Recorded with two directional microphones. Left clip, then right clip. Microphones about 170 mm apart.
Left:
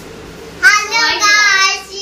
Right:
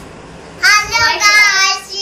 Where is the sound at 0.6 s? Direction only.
15° left (ahead or behind).